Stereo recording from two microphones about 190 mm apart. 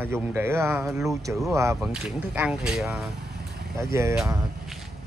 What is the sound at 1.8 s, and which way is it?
Speech, 5° right (ahead or behind).